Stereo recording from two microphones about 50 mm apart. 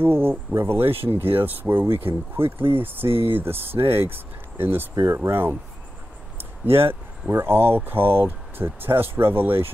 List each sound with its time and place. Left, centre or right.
0.0 s speech: right
4.9 s speech: right
6.6 s speech: right